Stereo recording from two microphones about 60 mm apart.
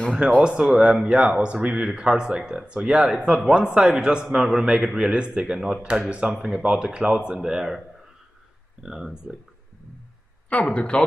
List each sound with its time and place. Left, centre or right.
0.4 s a man's voice: centre
8.8 s a man's voice: centre
10.5 s speech: left